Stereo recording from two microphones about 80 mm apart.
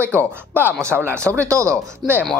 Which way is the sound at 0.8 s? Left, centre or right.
Right.